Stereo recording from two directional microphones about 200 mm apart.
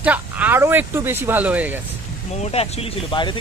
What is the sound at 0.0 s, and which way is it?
Speech, 10° right (ahead or behind).